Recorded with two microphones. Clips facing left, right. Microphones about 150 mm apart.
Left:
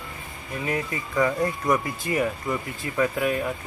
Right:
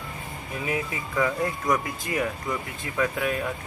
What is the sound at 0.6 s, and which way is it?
Speech, 5° right (ahead or behind).